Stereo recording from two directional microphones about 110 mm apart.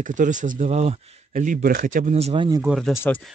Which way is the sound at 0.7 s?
90° right.